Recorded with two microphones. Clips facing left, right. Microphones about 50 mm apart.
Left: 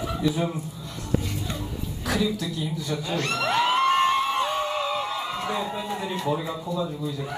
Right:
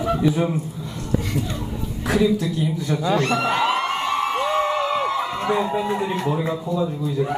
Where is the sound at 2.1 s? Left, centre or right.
Right.